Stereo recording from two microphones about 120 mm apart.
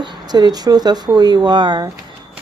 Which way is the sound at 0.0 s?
35° right (ahead or behind).